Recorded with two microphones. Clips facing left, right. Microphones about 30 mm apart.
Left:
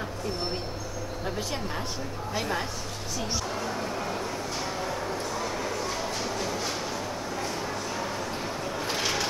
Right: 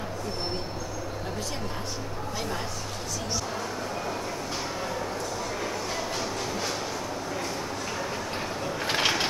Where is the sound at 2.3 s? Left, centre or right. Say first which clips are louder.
Left 4 dB; centre.